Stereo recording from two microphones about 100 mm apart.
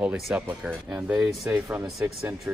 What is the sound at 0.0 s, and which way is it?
Speech, 10° right (ahead or behind).